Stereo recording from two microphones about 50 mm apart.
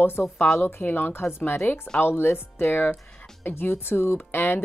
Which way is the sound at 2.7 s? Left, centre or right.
Left.